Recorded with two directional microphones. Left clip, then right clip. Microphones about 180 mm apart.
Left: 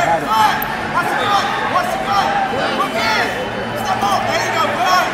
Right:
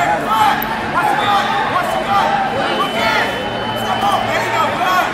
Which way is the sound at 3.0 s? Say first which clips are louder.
Right 1 dB; 25° left (ahead or behind).